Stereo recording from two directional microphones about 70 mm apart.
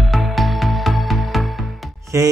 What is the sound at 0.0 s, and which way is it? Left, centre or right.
Music, centre.